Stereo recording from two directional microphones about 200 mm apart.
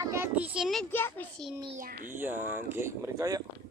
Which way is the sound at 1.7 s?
45° right (ahead or behind).